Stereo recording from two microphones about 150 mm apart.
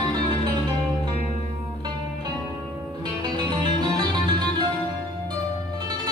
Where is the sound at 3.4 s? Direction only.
30° right (ahead or behind).